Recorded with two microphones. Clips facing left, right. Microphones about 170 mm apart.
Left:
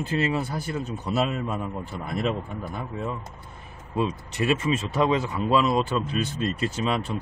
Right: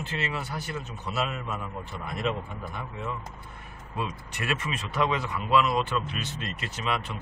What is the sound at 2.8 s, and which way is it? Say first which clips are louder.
Speech: left 3 dB; 30° left (ahead or behind).